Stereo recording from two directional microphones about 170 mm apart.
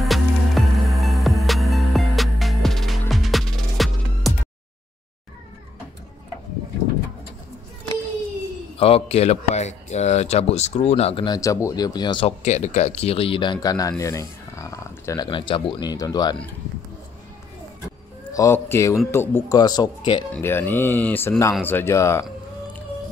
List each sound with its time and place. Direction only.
0.0 s music: centre (ahead or behind)
8.7 s speech: 35° left (ahead or behind)
11.2 s speech: 20° left (ahead or behind)
12.4 s speech: 40° left (ahead or behind); by 16.3 s 25° left (ahead or behind)
17.8 s a sound: 20° left (ahead or behind)
19.0 s speech: 15° left (ahead or behind)
20.3 s speech: 10° left (ahead or behind)